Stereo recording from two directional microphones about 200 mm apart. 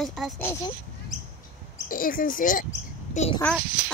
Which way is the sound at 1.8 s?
45° left (ahead or behind).